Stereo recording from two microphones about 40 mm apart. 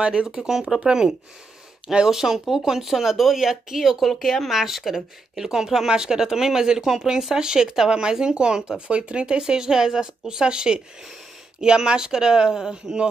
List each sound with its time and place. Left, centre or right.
0.0 s speech: right
2.0 s speech: centre